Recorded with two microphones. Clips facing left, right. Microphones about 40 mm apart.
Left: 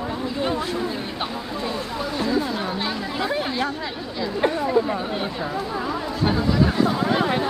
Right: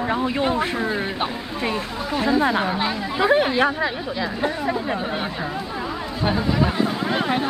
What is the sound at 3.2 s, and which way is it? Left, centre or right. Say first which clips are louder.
Speech: right 9 dB; right.